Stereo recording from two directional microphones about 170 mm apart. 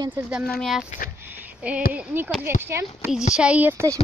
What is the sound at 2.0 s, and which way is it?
A woman's voice, 10° right (ahead or behind).